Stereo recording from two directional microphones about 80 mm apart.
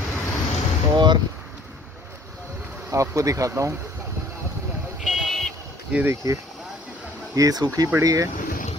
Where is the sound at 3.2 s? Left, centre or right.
Right.